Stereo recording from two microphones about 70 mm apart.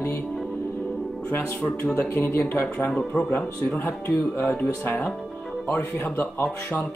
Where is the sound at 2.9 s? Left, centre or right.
Centre.